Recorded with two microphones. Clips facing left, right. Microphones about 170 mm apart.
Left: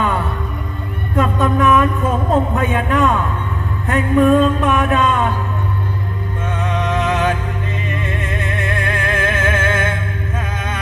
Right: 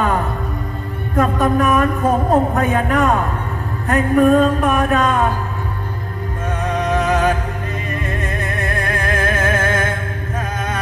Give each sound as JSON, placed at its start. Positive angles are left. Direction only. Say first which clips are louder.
{"t": 1.2, "sound": "speech", "louder": "even", "side_deg": -40}
{"t": 6.7, "sound": "music", "louder": "right 2 dB", "side_deg": -40}
{"t": 8.5, "sound": "music", "louder": "even", "side_deg": -40}